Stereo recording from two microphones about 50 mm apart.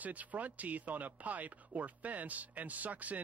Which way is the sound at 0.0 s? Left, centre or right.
Right.